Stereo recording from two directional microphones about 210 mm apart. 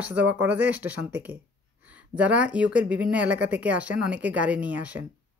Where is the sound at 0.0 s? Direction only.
5° right (ahead or behind).